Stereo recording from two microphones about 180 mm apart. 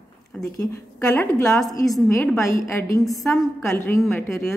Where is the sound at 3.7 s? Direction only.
15° left (ahead or behind).